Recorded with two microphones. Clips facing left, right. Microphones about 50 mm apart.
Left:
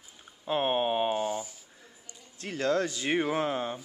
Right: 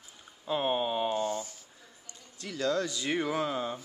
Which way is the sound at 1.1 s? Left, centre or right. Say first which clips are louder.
Left 1 dB; centre.